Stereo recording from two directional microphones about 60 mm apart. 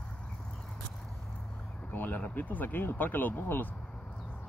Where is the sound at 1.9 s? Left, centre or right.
Left.